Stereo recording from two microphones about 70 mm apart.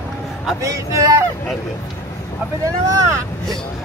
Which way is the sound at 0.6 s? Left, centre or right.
Right.